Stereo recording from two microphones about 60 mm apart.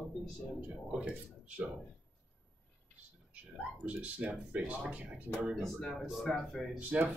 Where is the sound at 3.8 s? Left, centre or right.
Right.